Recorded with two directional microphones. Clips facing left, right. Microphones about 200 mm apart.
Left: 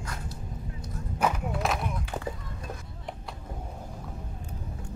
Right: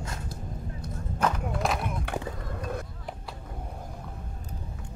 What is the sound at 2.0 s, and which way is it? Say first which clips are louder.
Skateboard: right 1 dB; 60° right (ahead or behind).